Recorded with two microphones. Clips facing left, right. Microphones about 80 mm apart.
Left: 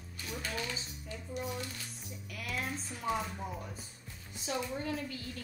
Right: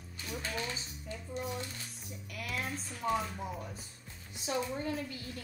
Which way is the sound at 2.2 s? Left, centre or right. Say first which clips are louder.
Even; centre.